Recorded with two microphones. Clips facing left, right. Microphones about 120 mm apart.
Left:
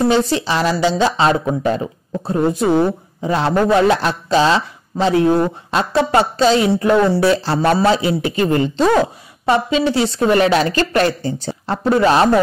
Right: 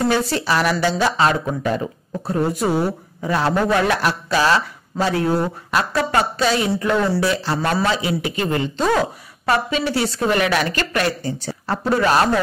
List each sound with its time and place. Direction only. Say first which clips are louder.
0.0 s speech: left 4 dB; 20° left (ahead or behind)